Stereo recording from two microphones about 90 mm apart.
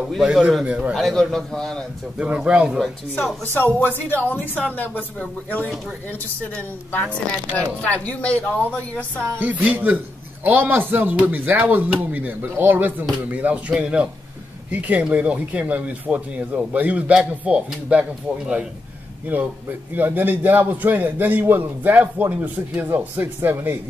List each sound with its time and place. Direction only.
0.1 s speech: 5° right (ahead or behind)
0.9 s a man's voice: 5° left (ahead or behind)
2.1 s speech: 10° right (ahead or behind)
3.5 s a woman's voice: 20° left (ahead or behind)
6.5 s speech: 15° left (ahead or behind)
9.4 s a man's voice: 15° right (ahead or behind)
19.3 s a man's voice: 20° right (ahead or behind)